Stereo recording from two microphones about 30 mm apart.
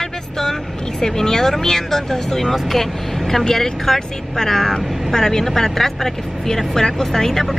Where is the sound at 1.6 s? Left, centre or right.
Centre.